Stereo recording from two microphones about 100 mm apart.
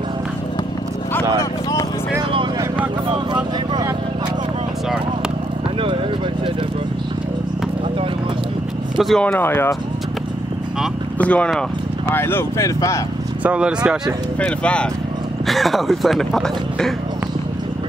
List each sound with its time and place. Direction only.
1.4 s a sound: 35° left (ahead or behind)
3.1 s vehicle: 50° right (ahead or behind)
8.9 s vehicle: centre (ahead or behind)
9.2 s speech: 20° left (ahead or behind)
11.1 s speech: 15° left (ahead or behind); by 13.0 s 30° left (ahead or behind)
13.4 s speech: 10° right (ahead or behind)
14.4 s speech: 10° left (ahead or behind)
15.4 s speech: centre (ahead or behind)